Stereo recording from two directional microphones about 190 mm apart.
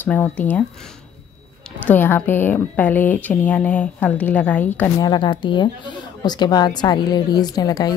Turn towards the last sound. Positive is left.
turn(degrees=20)  # may be behind; listen again after turning